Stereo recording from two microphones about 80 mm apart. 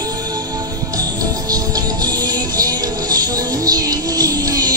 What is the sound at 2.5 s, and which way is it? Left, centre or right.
Music, right.